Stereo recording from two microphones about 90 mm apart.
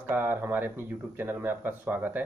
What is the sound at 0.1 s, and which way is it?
Speech, 20° right (ahead or behind).